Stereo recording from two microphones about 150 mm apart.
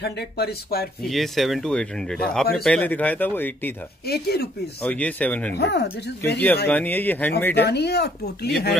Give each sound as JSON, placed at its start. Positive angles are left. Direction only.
{"t": 0.0, "sound": "speech", "side_deg": 90}
{"t": 1.0, "sound": "speech", "side_deg": 0}
{"t": 4.0, "sound": "speech", "side_deg": 90}
{"t": 4.8, "sound": "speech", "side_deg": 10}
{"t": 5.5, "sound": "speech", "side_deg": 90}
{"t": 6.3, "sound": "speech", "side_deg": 10}
{"t": 7.6, "sound": "speech", "side_deg": 90}